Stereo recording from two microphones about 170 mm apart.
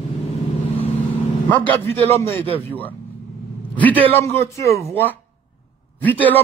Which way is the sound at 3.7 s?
10° left (ahead or behind).